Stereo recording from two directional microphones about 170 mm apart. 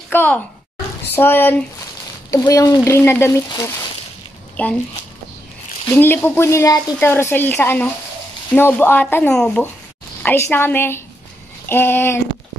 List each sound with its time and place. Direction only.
0.1 s a woman's voice: 10° left (ahead or behind)
5.9 s a woman's voice: 10° left (ahead or behind)